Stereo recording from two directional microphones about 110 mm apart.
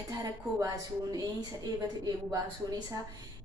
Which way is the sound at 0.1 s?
35° right (ahead or behind).